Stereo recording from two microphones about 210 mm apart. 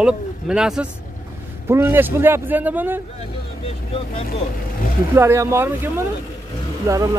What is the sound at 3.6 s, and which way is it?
Speech, 25° left (ahead or behind).